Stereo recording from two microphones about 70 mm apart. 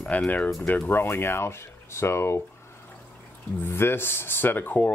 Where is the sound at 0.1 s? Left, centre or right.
Left.